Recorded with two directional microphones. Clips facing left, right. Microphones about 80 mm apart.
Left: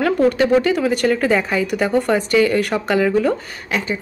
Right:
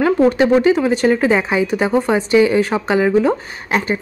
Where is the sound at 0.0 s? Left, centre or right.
Right.